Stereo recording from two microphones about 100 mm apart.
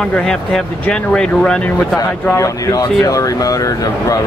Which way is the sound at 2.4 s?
35° left (ahead or behind).